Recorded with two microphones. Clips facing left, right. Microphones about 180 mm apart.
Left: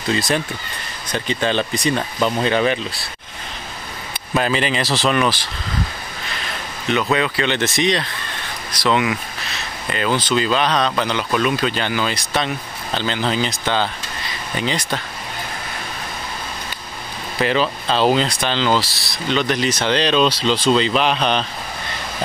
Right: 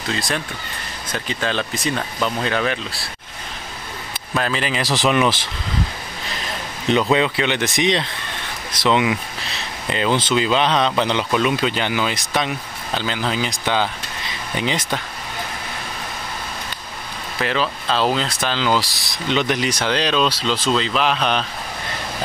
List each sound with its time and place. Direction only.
0.1 s speech: centre (ahead or behind)
2.1 s speech: 10° left (ahead or behind)
4.4 s speech: centre (ahead or behind)
4.8 s speech: 15° right (ahead or behind)
7.1 s speech: 20° right (ahead or behind)
17.4 s speech: centre (ahead or behind)